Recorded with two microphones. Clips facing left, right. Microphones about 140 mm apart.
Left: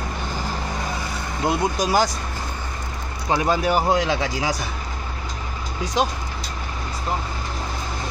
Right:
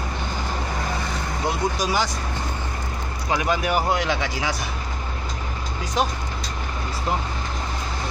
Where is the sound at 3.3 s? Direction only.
30° left (ahead or behind).